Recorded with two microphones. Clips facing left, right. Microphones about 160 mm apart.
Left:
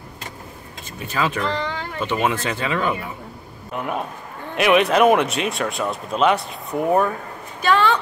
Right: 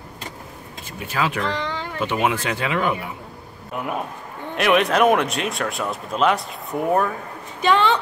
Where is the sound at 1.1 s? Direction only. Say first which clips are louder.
Left 1 dB; 10° right (ahead or behind).